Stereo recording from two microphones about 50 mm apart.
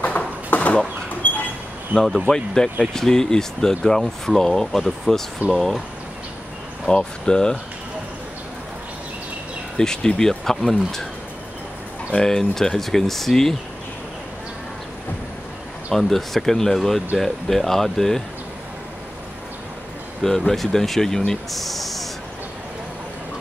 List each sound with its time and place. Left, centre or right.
0.5 s bird: left
1.2 s train: left
1.9 s speech: right
2.2 s speech: centre
6.9 s speech: centre
9.8 s speech: centre
12.2 s speech: centre
16.0 s speech: centre
20.2 s speech: centre
21.3 s spray: centre